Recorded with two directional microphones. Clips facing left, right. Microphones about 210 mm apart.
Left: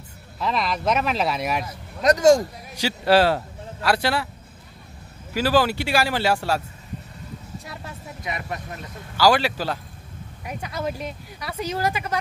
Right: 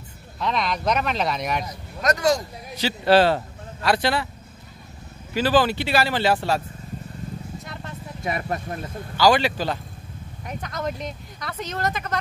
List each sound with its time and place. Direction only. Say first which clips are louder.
0.4 s speech: even; 5° left (ahead or behind)
2.0 s speech: left 4 dB; 30° left (ahead or behind)
2.7 s a man's voice: right 1 dB; 10° left (ahead or behind)
5.3 s speech: even; 10° left (ahead or behind)
7.6 s vehicle: right 1 dB; 10° left (ahead or behind)
8.3 s speech: right 4 dB; 45° right (ahead or behind)
9.1 s speech: even; 5° left (ahead or behind)